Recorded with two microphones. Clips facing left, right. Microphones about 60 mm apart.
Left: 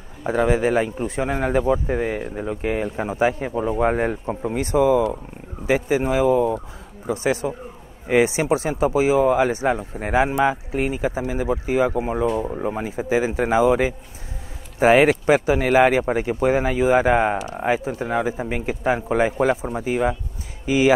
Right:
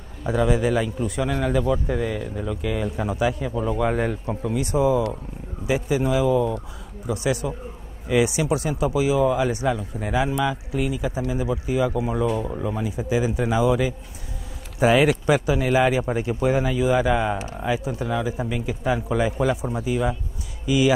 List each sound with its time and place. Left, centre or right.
0.3 s speech: left